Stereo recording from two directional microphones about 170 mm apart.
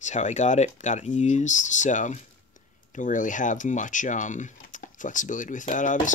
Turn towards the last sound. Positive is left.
turn(degrees=50)  # may be behind; listen again after turning